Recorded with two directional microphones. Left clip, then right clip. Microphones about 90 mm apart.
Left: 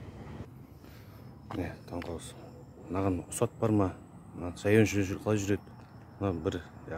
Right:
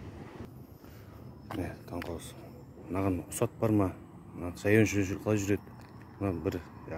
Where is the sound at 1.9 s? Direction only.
40° left (ahead or behind).